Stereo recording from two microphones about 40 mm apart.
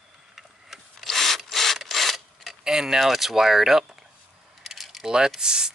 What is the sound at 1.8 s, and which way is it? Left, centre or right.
Filing, centre.